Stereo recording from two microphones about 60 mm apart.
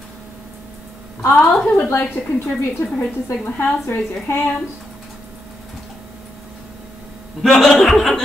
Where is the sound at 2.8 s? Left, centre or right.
Left.